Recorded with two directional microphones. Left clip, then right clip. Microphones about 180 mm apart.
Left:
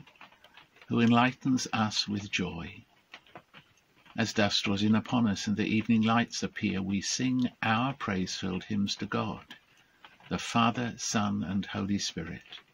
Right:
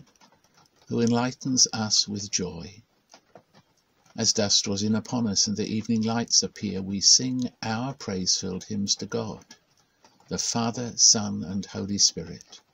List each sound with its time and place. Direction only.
0.9 s speech: 30° right (ahead or behind)
4.2 s speech: 35° right (ahead or behind)
10.3 s speech: 30° right (ahead or behind)
11.2 s speech: 5° left (ahead or behind)
11.6 s speech: 30° right (ahead or behind)